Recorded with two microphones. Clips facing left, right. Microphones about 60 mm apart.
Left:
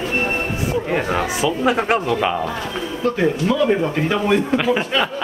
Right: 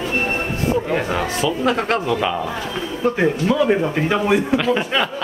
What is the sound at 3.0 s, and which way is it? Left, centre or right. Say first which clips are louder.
A man's voice: right 1 dB; centre.